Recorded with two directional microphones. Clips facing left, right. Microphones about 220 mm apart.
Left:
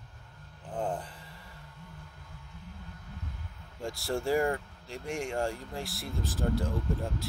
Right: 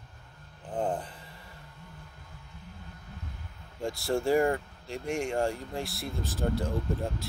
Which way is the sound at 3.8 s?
25° right (ahead or behind).